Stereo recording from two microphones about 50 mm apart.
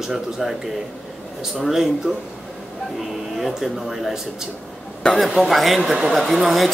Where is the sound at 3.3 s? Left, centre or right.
Centre.